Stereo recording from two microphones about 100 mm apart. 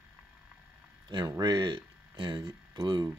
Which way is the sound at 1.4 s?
45° right (ahead or behind).